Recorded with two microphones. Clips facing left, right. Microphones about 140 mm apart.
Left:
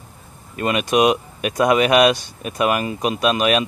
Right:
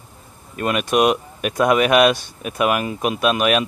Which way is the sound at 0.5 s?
Centre (ahead or behind).